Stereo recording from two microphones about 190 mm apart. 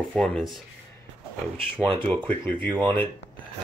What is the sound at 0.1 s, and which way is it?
Speech, 5° left (ahead or behind).